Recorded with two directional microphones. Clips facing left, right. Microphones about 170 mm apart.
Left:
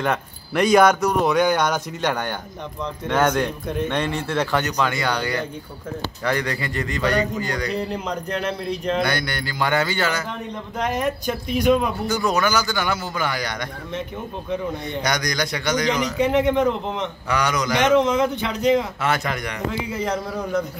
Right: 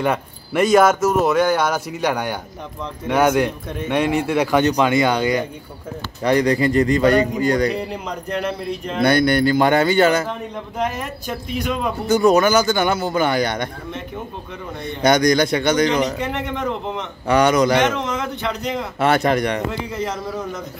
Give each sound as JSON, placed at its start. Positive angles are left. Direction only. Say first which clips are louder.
{"t": 0.0, "sound": "a man's voice", "louder": "right 3 dB", "side_deg": -5}
{"t": 7.7, "sound": "a man's voice", "louder": "even", "side_deg": -5}
{"t": 9.0, "sound": "a man's voice", "louder": "right 9 dB", "side_deg": -25}
{"t": 10.8, "sound": "speech", "louder": "left 2 dB", "side_deg": -5}
{"t": 12.4, "sound": "a man's voice", "louder": "right 5 dB", "side_deg": -25}
{"t": 15.0, "sound": "a man's voice", "louder": "right 11 dB", "side_deg": -25}
{"t": 16.2, "sound": "speech", "louder": "left 7 dB", "side_deg": 0}
{"t": 17.3, "sound": "a man's voice", "louder": "right 8 dB", "side_deg": -25}
{"t": 17.9, "sound": "speech", "louder": "left 7 dB", "side_deg": 0}
{"t": 19.1, "sound": "speech", "louder": "right 9 dB", "side_deg": -35}
{"t": 20.0, "sound": "speech", "louder": "left 1 dB", "side_deg": 0}